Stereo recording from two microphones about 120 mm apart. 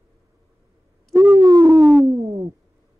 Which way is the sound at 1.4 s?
30° right (ahead or behind).